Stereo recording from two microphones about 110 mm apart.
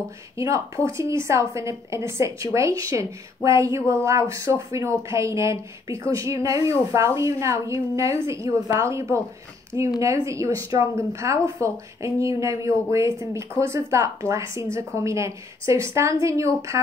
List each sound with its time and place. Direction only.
0.4 s a woman's voice: 30° right (ahead or behind)